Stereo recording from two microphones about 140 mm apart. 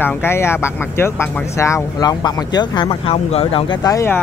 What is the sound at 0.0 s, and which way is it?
Speech, 15° left (ahead or behind).